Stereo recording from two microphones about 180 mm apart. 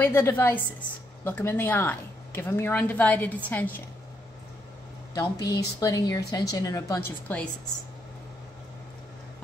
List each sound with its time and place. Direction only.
0.0 s speech: 10° left (ahead or behind)
5.1 s a woman's voice: 20° left (ahead or behind)